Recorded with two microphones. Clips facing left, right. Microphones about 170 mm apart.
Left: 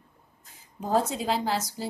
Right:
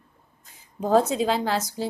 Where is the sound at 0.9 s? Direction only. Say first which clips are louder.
Right 5 dB; 90° right.